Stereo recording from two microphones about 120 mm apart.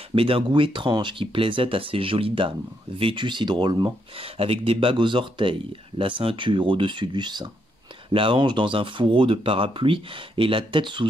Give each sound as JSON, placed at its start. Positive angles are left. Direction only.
{"t": 0.1, "sound": "speech", "side_deg": -50}